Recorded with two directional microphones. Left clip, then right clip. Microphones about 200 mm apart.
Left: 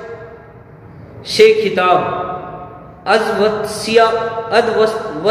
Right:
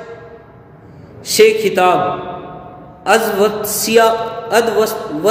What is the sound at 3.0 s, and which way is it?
A man's voice, 60° right (ahead or behind).